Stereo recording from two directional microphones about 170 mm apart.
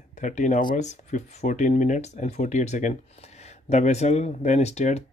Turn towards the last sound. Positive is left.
turn(degrees=40)  # may be behind; listen again after turning